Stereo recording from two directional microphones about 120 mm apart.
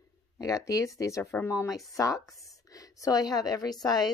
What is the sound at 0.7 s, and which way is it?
Speech, 30° left (ahead or behind).